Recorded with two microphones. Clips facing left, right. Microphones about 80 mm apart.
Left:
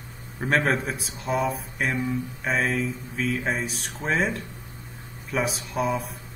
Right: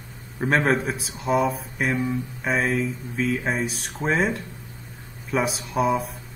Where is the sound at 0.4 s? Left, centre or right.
Centre.